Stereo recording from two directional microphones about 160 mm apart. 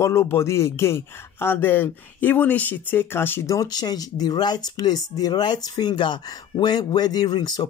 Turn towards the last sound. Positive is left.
turn(degrees=25)  # may be behind; listen again after turning